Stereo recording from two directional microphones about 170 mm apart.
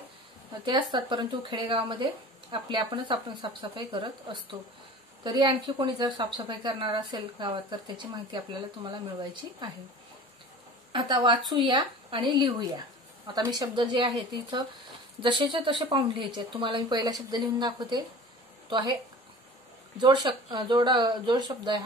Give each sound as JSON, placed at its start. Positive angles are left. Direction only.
{"t": 0.7, "sound": "a woman's voice", "side_deg": -25}
{"t": 10.9, "sound": "a woman's voice", "side_deg": -30}
{"t": 20.0, "sound": "a woman's voice", "side_deg": -25}